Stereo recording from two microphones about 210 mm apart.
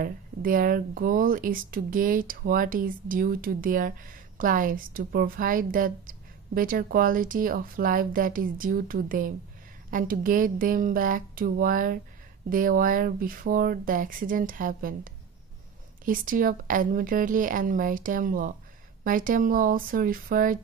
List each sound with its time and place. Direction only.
0.0 s speech: 40° right (ahead or behind)